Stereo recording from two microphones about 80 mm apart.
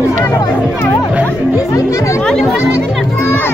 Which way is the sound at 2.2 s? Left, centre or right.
Centre.